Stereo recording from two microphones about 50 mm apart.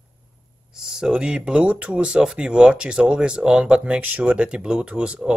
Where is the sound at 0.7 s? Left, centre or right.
Centre.